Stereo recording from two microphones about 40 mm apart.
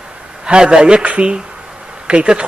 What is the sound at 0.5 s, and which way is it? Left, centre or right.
A man's voice, centre.